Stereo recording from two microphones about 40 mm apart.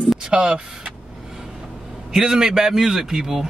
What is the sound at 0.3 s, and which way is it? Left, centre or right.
Speech, right.